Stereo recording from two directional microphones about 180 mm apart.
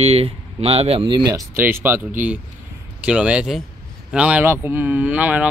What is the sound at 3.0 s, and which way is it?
Speech, 5° right (ahead or behind).